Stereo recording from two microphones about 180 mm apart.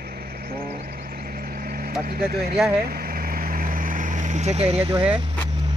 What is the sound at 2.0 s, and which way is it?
Speech, 55° right (ahead or behind).